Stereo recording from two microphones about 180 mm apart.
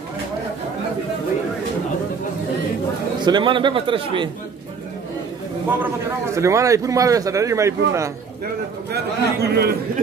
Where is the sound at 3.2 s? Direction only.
25° right (ahead or behind).